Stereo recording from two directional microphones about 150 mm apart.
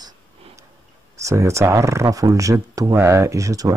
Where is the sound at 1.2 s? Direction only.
20° right (ahead or behind).